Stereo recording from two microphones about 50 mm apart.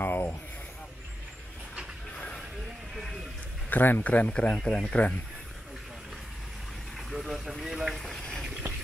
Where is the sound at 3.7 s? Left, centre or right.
Left.